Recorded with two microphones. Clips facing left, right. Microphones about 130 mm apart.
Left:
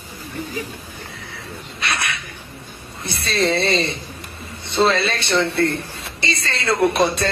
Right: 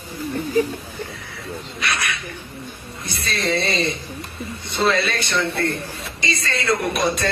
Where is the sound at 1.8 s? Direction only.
30° left (ahead or behind).